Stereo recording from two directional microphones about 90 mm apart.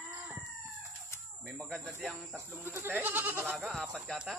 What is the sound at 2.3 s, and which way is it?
Speech, 25° right (ahead or behind).